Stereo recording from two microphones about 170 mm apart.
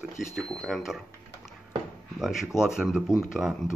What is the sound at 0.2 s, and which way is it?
Speech, centre (ahead or behind).